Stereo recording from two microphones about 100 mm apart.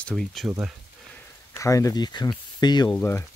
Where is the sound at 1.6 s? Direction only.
35° left (ahead or behind).